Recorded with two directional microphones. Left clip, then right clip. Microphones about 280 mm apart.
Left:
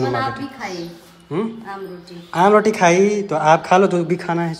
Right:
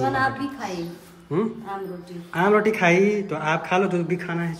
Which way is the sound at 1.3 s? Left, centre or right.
Centre.